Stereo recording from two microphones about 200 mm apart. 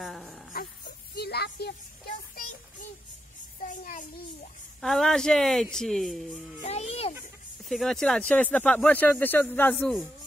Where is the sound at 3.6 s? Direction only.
40° left (ahead or behind).